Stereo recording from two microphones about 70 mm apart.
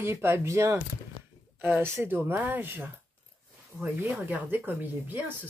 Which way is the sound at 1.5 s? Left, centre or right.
Right.